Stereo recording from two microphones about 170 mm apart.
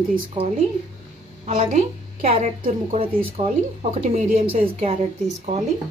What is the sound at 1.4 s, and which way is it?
A woman's voice, 40° right (ahead or behind).